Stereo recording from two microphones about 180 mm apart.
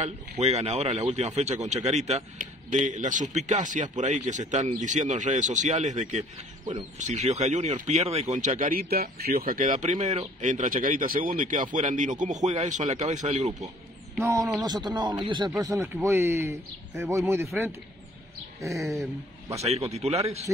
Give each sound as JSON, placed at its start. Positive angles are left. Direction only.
{"t": 0.0, "sound": "a man's voice", "side_deg": -35}
{"t": 14.2, "sound": "speech", "side_deg": -15}
{"t": 19.5, "sound": "a man's voice", "side_deg": -35}